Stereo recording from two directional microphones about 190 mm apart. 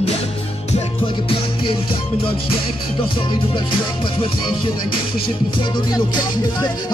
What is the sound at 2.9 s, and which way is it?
Speech, 25° left (ahead or behind).